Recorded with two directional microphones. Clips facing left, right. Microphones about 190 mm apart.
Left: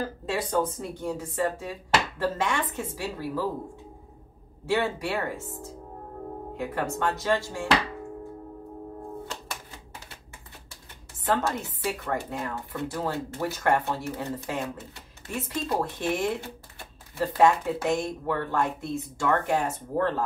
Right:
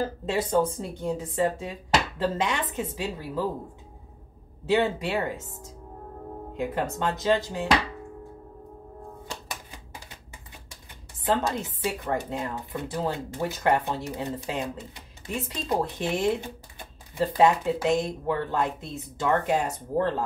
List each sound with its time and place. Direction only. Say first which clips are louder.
0.0 s speech: right 3 dB; 25° right (ahead or behind)
4.6 s speech: right 3 dB; 20° right (ahead or behind)
6.5 s speech: right 2 dB; 20° right (ahead or behind)
9.3 s typewriter: even; 15° right (ahead or behind)
11.2 s speech: right 1 dB; 15° right (ahead or behind)